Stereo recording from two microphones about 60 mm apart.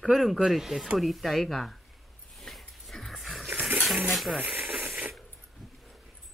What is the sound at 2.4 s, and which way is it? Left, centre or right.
Dog, centre.